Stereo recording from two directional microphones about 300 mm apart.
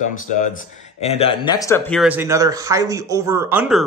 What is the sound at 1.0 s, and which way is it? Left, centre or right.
Speech, centre.